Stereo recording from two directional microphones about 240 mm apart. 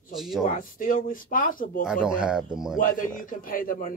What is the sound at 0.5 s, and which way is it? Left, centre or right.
Speech, left.